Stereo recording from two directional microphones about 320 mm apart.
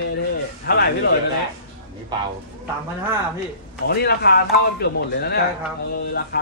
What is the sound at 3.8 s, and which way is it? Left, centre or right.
Speech, left.